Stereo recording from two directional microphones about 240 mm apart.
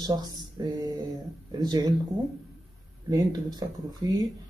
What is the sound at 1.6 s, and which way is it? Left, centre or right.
Speech, centre.